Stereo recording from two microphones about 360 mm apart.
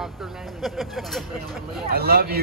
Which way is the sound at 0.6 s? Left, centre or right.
Centre.